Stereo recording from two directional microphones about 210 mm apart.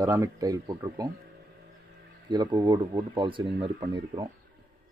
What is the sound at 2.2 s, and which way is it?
Speech, 20° right (ahead or behind).